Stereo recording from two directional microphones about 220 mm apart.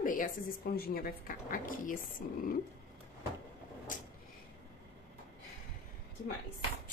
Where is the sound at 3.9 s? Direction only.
35° left (ahead or behind).